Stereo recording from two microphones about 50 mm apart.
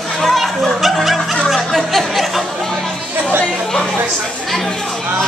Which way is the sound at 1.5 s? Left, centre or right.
Centre.